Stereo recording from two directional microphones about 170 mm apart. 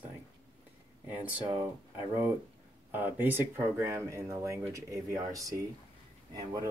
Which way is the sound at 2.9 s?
10° right (ahead or behind).